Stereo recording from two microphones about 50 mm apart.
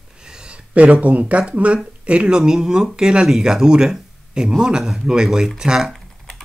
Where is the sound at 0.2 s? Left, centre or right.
Centre.